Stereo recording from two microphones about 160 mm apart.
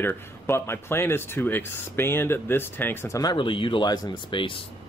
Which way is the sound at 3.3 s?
30° left (ahead or behind).